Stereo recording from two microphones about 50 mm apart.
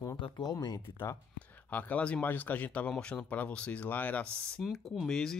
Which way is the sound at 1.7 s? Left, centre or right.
Left.